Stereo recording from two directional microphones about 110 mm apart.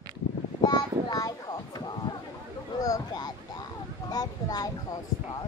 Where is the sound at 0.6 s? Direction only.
35° left (ahead or behind).